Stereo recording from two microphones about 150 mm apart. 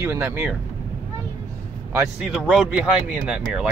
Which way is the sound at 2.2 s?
5° right (ahead or behind).